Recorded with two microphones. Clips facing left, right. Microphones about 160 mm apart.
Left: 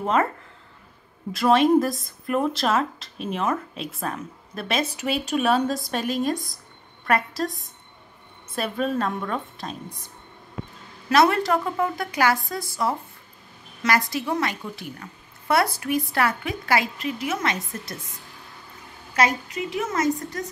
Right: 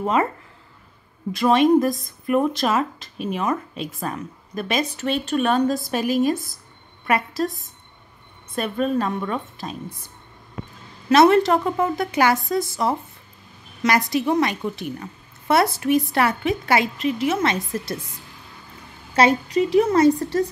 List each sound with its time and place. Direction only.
0.0 s speech: 5° right (ahead or behind)
1.3 s speech: centre (ahead or behind)
11.1 s a woman's voice: 20° right (ahead or behind)
19.1 s a woman's voice: 35° right (ahead or behind)